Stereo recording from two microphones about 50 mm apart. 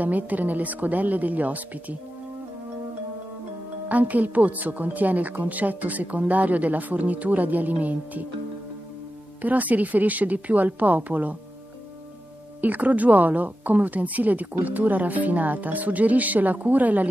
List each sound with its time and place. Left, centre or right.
0.0 s a woman's voice: right
3.9 s a woman's voice: right
9.4 s a woman's voice: right
12.6 s a woman's voice: right